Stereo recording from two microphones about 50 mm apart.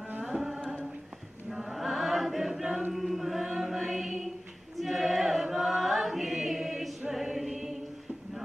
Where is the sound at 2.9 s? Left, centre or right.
Centre.